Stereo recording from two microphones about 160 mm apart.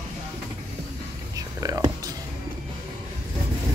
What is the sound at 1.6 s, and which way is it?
Whispering, 20° right (ahead or behind).